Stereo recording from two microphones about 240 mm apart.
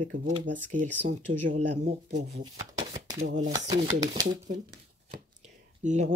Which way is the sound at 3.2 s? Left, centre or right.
Right.